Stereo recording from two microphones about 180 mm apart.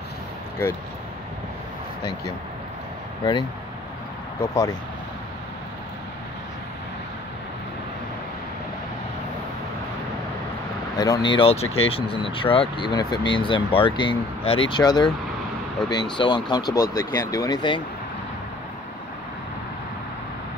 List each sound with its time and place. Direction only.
4.4 s speech: 20° left (ahead or behind)
11.0 s speech: 25° left (ahead or behind)